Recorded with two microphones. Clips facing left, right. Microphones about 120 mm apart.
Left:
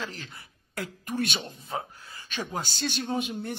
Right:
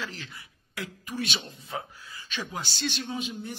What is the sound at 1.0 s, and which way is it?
Speech, 50° left (ahead or behind).